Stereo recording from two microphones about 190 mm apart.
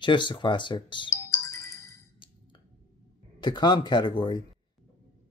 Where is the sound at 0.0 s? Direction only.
25° left (ahead or behind).